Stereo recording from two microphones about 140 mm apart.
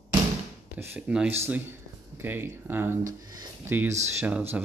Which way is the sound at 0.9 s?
10° right (ahead or behind).